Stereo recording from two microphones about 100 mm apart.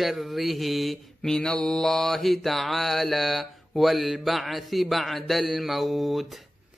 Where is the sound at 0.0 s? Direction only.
Centre (ahead or behind).